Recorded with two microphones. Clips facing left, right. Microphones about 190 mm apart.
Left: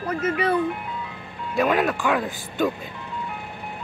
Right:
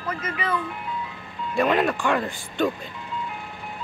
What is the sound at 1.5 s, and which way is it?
Speech, centre (ahead or behind).